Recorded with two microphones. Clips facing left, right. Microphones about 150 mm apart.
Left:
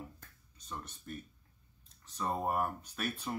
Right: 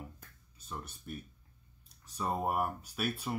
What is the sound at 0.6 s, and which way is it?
Speech, 10° right (ahead or behind).